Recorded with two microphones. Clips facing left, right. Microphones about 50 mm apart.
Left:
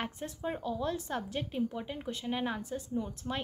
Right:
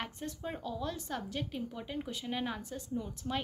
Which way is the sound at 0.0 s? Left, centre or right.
Centre.